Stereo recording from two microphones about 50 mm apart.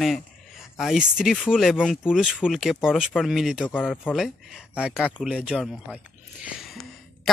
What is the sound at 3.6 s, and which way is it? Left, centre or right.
Speech, left.